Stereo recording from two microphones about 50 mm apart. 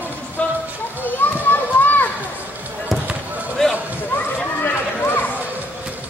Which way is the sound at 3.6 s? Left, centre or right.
Centre.